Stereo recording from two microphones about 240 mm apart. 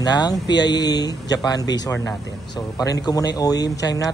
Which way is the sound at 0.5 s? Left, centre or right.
Left.